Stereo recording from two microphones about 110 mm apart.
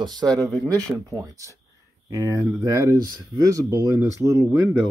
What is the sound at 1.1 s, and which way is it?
Speech, 30° right (ahead or behind).